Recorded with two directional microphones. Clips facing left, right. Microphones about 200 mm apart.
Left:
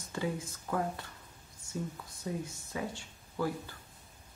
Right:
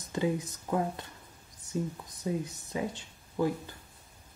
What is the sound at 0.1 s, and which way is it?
Speech, 20° right (ahead or behind).